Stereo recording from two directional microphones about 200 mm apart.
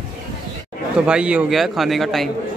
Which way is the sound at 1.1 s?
5° right (ahead or behind).